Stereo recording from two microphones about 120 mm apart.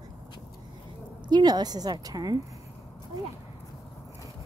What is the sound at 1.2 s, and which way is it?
A woman's voice, 35° right (ahead or behind).